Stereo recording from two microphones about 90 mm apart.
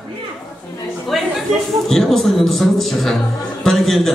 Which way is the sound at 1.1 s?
Centre (ahead or behind).